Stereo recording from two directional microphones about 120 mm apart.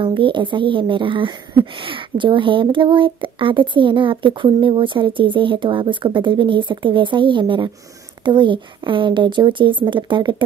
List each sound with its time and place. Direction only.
0.0 s a woman's voice: 40° right (ahead or behind)